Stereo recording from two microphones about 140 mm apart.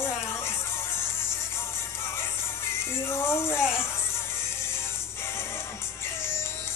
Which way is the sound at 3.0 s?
20° left (ahead or behind).